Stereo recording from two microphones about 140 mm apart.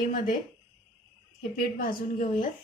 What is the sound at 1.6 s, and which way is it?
Speech, 80° left.